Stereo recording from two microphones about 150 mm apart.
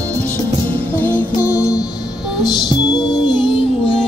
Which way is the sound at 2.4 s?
30° left (ahead or behind).